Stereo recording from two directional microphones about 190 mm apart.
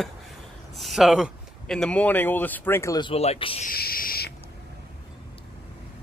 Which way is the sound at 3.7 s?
50° left (ahead or behind).